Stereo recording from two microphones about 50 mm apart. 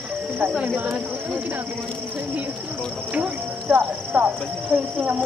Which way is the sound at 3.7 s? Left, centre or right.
Right.